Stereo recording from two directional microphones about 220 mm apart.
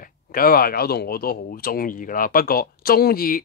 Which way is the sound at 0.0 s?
40° left (ahead or behind).